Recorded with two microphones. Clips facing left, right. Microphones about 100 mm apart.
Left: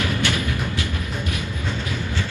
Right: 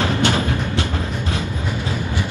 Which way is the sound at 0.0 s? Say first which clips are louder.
Right 5 dB; 30° right (ahead or behind).